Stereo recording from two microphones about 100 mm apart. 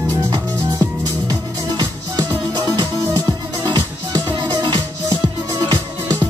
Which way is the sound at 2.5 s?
40° right (ahead or behind).